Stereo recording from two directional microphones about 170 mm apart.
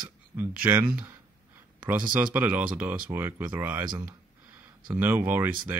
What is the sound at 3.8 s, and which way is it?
Speech, 25° right (ahead or behind).